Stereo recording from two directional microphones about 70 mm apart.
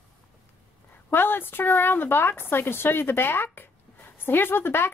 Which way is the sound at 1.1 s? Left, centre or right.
Left.